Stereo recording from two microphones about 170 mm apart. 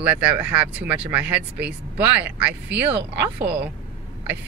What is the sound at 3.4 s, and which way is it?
Speech, 80° right.